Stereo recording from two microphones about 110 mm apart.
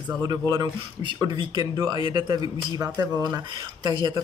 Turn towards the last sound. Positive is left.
turn(degrees=-40)  # may be behind; listen again after turning